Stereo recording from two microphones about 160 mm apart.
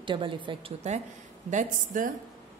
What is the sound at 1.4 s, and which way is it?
Speech, 55° right (ahead or behind).